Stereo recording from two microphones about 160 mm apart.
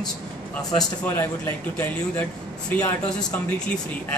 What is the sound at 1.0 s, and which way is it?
Speech, 15° left (ahead or behind).